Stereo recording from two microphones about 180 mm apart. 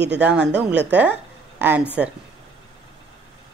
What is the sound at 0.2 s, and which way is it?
A woman's voice, 5° right (ahead or behind).